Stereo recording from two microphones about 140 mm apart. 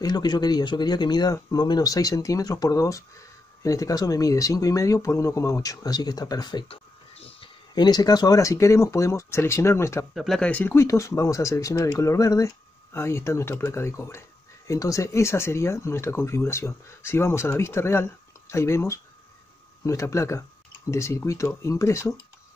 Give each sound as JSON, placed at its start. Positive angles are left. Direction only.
{"t": 0.0, "sound": "speech", "side_deg": 30}
{"t": 7.2, "sound": "a sound", "side_deg": 45}
{"t": 7.7, "sound": "speech", "side_deg": 30}
{"t": 10.1, "sound": "speech", "side_deg": 0}